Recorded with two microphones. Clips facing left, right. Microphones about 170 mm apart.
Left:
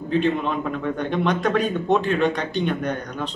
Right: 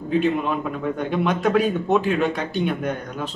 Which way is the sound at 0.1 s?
5° right (ahead or behind).